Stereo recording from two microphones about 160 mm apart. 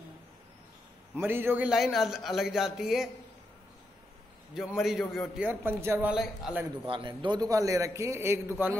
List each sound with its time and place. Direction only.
1.1 s a man's voice: 15° right (ahead or behind)
4.6 s a man's voice: centre (ahead or behind)
5.5 s a man's voice: 15° right (ahead or behind)
6.9 s a man's voice: 30° right (ahead or behind); by 8.4 s 15° right (ahead or behind)